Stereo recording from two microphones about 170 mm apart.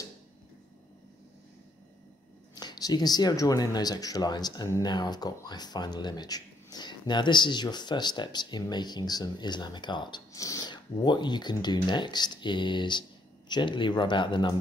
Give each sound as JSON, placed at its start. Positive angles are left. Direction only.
{"t": 2.5, "sound": "speech", "side_deg": 25}